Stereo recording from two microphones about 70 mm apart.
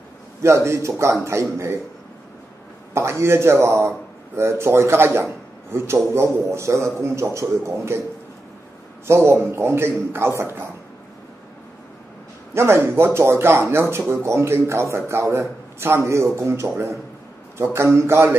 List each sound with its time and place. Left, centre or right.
0.4 s a man's voice: right
2.9 s a man's voice: right
9.0 s speech: right
12.5 s a man's voice: right
17.7 s speech: right